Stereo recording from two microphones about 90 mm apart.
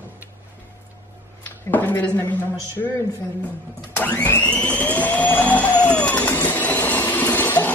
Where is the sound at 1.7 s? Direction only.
20° left (ahead or behind).